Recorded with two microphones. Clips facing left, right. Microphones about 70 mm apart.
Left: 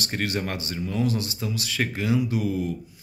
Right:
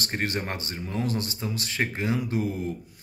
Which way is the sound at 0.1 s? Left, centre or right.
Right.